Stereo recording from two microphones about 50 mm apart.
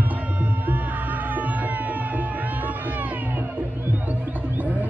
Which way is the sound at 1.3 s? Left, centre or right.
Right.